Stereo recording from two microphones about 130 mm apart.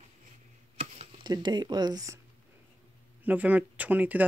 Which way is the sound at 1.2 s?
35° right (ahead or behind).